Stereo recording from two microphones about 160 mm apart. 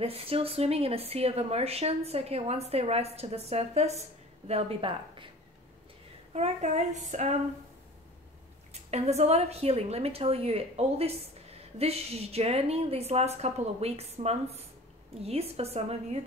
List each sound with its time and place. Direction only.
0.0 s speech: 35° right (ahead or behind)
6.3 s child singing: 45° right (ahead or behind)
8.7 s speech: 40° right (ahead or behind)